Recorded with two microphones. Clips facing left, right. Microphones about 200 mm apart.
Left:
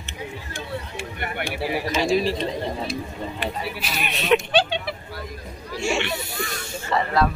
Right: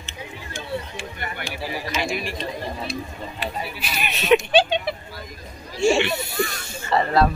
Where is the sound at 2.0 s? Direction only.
35° left (ahead or behind).